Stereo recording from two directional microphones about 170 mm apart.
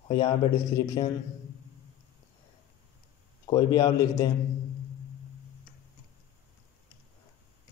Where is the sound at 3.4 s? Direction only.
25° left (ahead or behind).